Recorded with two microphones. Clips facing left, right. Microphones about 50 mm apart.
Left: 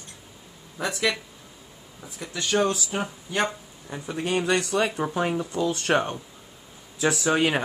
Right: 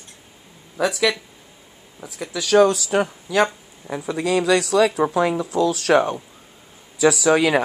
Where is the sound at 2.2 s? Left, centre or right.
Right.